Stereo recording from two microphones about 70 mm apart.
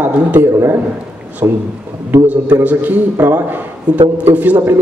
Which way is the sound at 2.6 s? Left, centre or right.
Right.